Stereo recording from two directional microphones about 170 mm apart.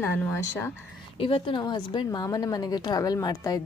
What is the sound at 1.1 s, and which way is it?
Speech, 30° left (ahead or behind).